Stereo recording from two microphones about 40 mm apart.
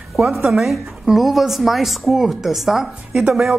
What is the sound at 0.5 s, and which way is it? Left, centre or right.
Speech, centre.